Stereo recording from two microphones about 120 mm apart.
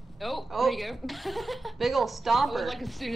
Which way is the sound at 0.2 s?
Centre (ahead or behind).